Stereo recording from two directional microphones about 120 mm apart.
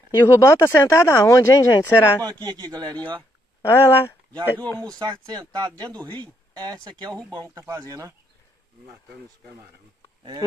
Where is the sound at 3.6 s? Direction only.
20° left (ahead or behind).